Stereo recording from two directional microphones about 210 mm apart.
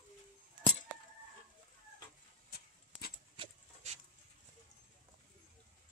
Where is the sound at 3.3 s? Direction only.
30° right (ahead or behind).